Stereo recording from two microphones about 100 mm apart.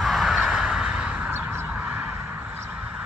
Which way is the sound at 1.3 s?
20° right (ahead or behind).